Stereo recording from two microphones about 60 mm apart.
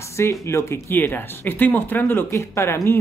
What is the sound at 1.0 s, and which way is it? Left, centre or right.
Speech, left.